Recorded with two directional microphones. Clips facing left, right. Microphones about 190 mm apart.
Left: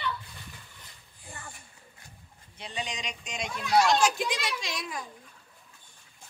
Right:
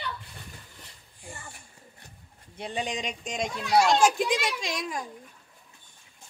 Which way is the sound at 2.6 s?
50° right (ahead or behind).